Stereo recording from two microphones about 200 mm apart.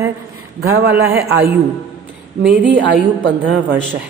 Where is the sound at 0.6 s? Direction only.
55° right (ahead or behind).